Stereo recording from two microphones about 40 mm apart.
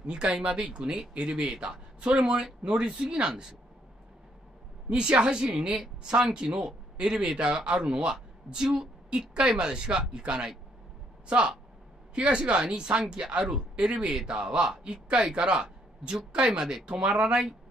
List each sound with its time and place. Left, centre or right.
0.0 s speech: right
1.3 s speech: centre
1.7 s speech: right
4.8 s a woman's voice: right